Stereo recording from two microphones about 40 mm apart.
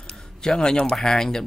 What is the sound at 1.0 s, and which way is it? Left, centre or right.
Speech, centre.